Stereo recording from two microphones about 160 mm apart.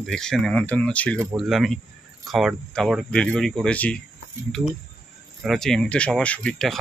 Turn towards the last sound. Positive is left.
turn(degrees=5)  # may be behind; listen again after turning